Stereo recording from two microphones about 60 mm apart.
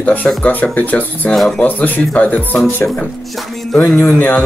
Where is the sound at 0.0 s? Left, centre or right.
Left.